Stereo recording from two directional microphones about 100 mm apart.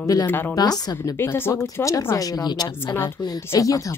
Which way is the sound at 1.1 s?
25° left (ahead or behind).